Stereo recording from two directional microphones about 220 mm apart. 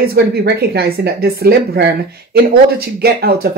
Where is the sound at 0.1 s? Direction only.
45° right (ahead or behind).